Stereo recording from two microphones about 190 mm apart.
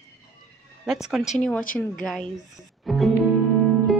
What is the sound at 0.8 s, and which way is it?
Speech, 5° right (ahead or behind).